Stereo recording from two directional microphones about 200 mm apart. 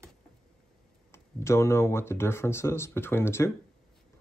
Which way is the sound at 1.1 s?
15° left (ahead or behind).